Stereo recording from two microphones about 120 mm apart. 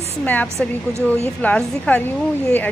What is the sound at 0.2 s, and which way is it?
A woman's voice, 15° left (ahead or behind).